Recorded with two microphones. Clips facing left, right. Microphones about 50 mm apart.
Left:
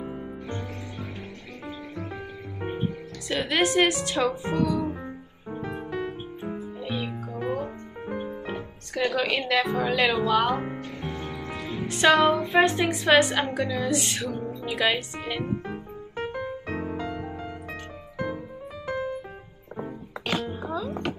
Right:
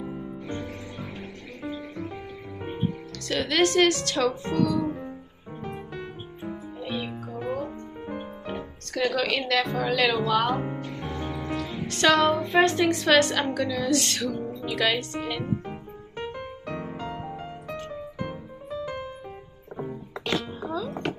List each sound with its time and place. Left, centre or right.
0.5 s music: centre
3.3 s a woman's voice: centre
6.8 s music: centre
8.9 s a woman's voice: centre
11.0 s music: centre
11.5 s a woman's voice: centre
20.6 s chopping: centre